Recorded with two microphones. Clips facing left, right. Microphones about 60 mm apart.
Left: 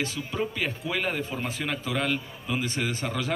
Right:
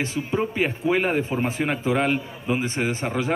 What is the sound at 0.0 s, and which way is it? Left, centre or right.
Speech, right.